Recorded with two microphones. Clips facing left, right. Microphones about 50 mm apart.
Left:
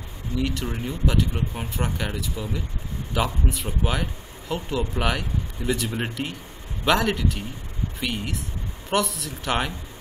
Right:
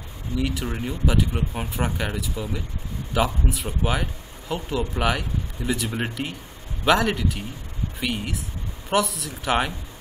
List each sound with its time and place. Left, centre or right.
0.4 s speech: centre